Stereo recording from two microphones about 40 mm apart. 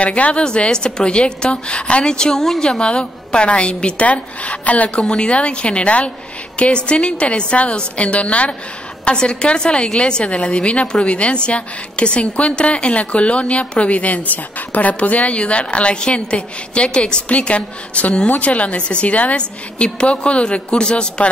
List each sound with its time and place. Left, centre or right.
0.0 s a woman's voice: left
0.4 s a woman's voice: left
2.8 s a woman's voice: left
9.0 s a woman's voice: left